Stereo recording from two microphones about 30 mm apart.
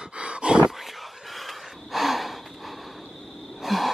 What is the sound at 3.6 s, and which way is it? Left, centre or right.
Wheeze, centre.